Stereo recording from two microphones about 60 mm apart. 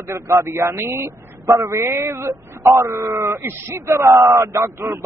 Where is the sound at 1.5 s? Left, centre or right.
Right.